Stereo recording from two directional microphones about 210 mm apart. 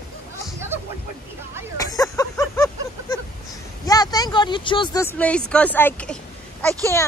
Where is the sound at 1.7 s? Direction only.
15° left (ahead or behind).